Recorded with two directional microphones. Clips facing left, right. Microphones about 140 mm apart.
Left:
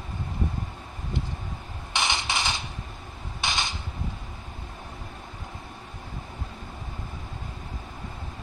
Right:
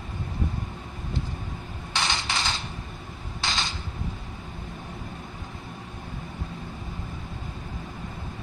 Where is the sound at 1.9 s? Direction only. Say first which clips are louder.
Left 1 dB; 20° left (ahead or behind).